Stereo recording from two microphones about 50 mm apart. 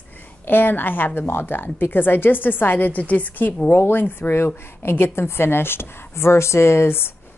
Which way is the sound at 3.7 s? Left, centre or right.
Left.